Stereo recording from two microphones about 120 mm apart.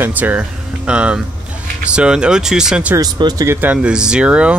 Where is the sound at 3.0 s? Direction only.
35° right (ahead or behind).